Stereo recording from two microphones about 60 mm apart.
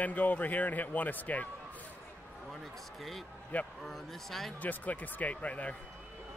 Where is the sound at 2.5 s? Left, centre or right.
Centre.